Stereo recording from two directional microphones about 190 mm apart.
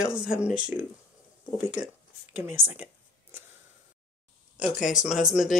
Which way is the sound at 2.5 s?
40° left (ahead or behind).